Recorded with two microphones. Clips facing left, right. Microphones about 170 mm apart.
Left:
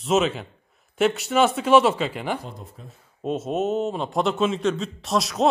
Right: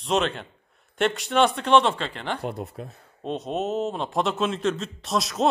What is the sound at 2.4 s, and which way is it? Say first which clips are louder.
Speech: right 8 dB; 70° right (ahead or behind).